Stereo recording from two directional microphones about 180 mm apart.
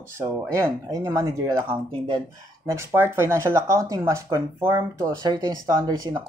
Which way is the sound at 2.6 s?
15° right (ahead or behind).